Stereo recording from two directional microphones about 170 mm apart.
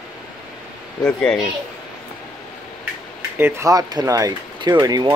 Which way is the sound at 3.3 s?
15° right (ahead or behind).